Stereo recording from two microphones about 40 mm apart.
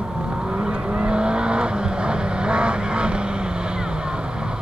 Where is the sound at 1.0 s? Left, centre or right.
Right.